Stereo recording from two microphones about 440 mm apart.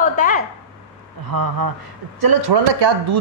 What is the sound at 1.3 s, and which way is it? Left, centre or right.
A woman's voice, right.